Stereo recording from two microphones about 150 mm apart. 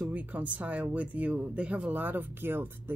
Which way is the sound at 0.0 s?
10° right (ahead or behind).